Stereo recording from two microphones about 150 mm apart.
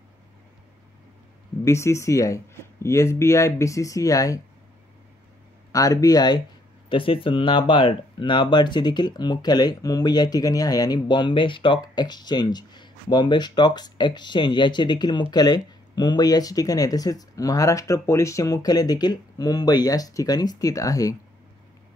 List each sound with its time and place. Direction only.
1.6 s speech: 20° left (ahead or behind)
5.7 s speech: 25° left (ahead or behind)